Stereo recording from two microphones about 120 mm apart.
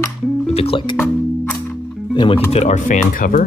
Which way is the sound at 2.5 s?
75° left (ahead or behind).